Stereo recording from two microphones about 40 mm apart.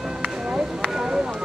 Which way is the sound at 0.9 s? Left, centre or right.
Centre.